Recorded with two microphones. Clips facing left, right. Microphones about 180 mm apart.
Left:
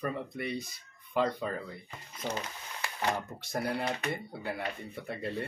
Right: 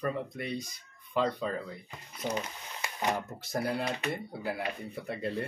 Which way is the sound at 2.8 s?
20° right (ahead or behind).